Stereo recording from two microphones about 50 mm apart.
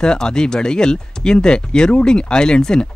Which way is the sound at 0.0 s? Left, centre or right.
Centre.